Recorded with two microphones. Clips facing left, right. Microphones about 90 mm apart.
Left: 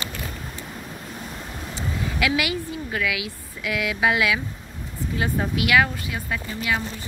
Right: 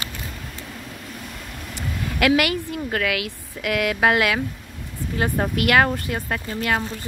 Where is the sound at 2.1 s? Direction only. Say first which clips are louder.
Right 6 dB; 55° right (ahead or behind).